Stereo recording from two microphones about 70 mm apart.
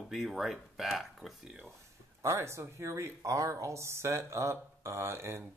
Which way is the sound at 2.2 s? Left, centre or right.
Right.